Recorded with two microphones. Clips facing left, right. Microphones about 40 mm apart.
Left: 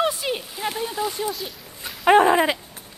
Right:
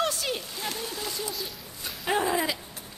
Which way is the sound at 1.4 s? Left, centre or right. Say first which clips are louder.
Left 3 dB; centre.